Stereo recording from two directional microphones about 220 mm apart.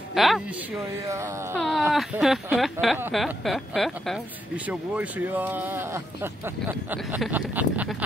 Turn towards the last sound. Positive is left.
turn(degrees=-5)  # may be behind; listen again after turning